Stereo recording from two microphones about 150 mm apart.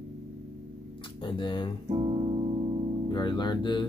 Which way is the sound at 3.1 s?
30° left (ahead or behind).